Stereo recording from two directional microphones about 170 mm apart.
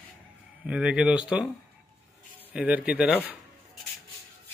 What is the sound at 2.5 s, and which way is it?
Speech, 5° right (ahead or behind).